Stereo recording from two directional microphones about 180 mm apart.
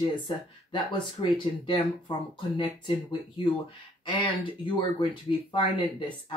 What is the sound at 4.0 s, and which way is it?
Speech, 25° left (ahead or behind).